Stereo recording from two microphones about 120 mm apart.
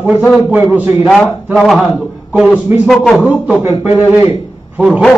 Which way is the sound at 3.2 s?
10° right (ahead or behind).